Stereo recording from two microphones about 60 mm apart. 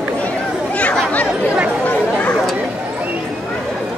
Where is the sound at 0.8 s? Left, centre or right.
Left.